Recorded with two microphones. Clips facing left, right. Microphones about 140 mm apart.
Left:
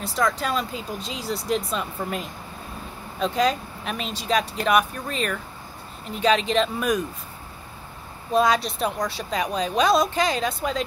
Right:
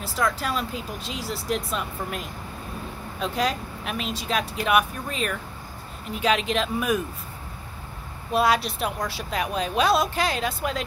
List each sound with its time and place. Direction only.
0.0 s a woman's voice: 5° right (ahead or behind)
8.4 s a woman's voice: 5° right (ahead or behind)